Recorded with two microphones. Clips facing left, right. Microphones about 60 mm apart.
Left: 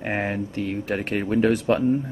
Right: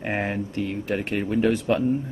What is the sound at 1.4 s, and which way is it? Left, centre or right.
Speech, centre.